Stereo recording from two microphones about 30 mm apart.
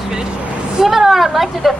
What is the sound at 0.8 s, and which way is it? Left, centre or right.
Speech, centre.